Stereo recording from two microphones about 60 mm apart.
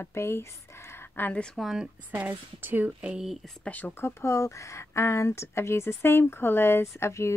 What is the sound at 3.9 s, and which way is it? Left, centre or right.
Speech, left.